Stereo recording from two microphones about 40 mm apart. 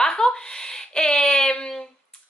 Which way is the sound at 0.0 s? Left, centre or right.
Centre.